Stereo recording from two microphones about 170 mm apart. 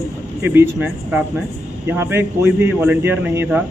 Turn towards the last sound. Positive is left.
turn(degrees=-10)  # may be behind; listen again after turning